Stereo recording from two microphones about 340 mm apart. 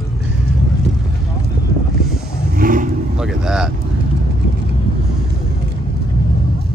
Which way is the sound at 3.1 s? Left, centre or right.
Centre.